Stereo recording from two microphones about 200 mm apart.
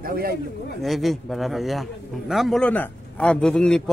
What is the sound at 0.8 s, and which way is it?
A man's voice, centre (ahead or behind).